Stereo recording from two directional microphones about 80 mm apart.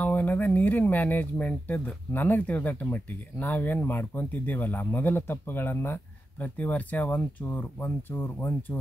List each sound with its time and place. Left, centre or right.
0.0 s speech: left